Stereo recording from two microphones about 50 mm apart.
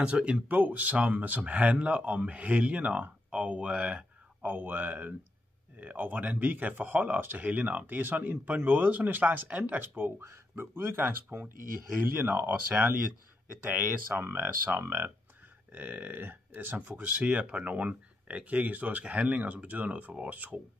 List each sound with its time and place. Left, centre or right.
0.0 s speech: right
0.6 s speech: right
4.4 s speech: right
11.1 s speech: right
12.1 s speech: right
12.4 s speech: right
13.7 s speech: right
15.7 s speech: right